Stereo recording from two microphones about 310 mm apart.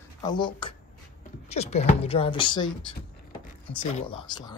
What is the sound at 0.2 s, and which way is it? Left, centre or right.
Speech, centre.